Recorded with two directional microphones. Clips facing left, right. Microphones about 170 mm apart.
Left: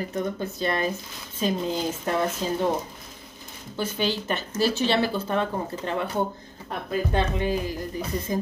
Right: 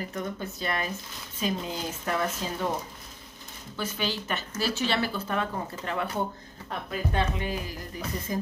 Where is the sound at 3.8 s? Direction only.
30° left (ahead or behind).